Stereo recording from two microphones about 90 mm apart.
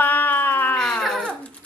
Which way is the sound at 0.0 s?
20° left (ahead or behind).